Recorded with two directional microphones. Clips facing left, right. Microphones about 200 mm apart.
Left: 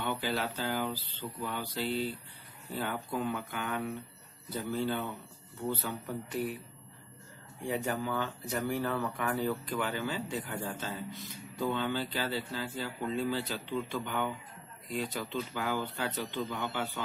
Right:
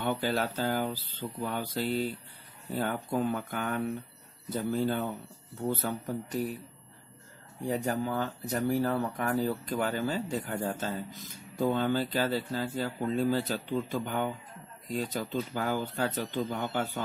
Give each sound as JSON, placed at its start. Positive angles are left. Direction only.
{"t": 0.0, "sound": "speech", "side_deg": -45}
{"t": 7.6, "sound": "speech", "side_deg": -40}